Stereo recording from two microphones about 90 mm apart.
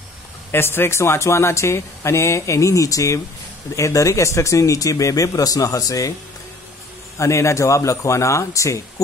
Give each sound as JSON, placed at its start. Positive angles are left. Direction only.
{"t": 0.5, "sound": "speech", "side_deg": 25}
{"t": 7.2, "sound": "speech", "side_deg": 35}